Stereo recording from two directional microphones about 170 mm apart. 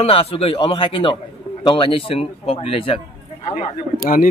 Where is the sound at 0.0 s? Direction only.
35° left (ahead or behind).